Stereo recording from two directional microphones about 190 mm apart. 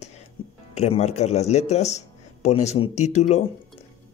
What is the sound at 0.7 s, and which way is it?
A man's voice, 35° left (ahead or behind).